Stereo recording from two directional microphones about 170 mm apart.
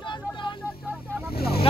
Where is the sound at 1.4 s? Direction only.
65° left (ahead or behind).